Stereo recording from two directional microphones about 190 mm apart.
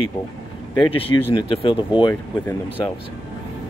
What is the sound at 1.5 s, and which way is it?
Speech, 25° left (ahead or behind).